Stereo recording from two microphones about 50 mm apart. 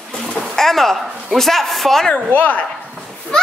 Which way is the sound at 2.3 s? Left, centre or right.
Left.